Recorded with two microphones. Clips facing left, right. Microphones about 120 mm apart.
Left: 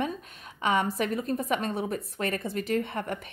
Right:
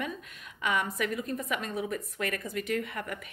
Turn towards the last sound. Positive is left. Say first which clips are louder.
# left 4 dB
turn(degrees=30)  # may be behind; listen again after turning